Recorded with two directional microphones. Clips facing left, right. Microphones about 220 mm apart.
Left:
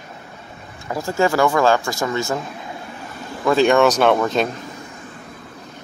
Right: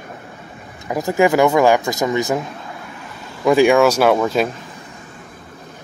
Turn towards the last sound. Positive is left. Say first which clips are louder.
# right 1 dB
turn(degrees=-5)  # may be behind; listen again after turning